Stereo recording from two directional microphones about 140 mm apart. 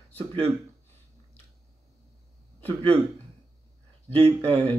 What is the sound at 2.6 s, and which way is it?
Speech, 10° left (ahead or behind).